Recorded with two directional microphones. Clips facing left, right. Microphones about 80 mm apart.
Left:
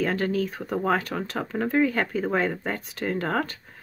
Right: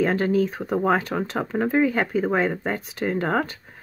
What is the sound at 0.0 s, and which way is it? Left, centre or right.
Speech, right.